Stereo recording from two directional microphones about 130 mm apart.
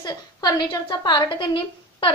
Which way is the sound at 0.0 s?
30° left (ahead or behind).